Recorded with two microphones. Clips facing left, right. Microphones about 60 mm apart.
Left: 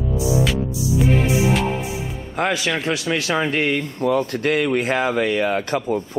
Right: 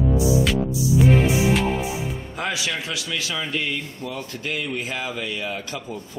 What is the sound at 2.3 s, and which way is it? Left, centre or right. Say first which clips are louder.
Speech: left 7 dB; left.